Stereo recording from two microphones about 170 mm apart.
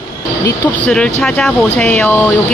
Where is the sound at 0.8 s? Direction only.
5° left (ahead or behind).